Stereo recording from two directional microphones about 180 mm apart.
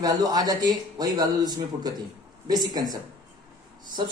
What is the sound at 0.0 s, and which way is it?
A man's voice, 20° right (ahead or behind).